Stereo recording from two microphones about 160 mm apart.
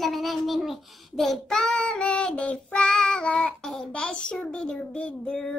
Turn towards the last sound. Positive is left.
turn(degrees=5)  # may be behind; listen again after turning